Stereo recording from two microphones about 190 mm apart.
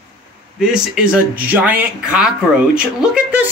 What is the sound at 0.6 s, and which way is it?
Speech, 5° right (ahead or behind).